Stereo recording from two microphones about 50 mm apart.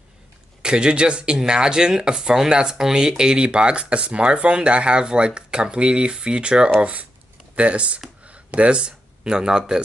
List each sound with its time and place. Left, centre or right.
0.6 s speech: centre
7.5 s speech: right